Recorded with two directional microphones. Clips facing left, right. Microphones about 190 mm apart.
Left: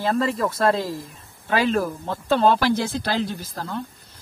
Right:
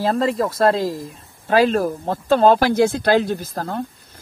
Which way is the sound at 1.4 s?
45° right (ahead or behind).